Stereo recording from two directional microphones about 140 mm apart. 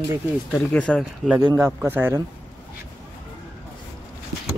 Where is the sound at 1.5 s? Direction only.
20° right (ahead or behind).